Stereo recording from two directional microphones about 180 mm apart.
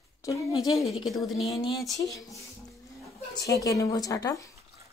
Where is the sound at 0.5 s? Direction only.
Centre (ahead or behind).